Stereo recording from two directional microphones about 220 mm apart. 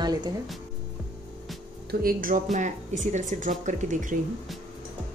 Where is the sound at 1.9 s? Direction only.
40° right (ahead or behind).